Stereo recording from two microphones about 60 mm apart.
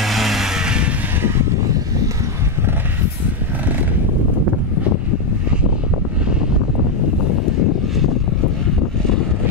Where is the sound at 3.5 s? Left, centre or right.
Right.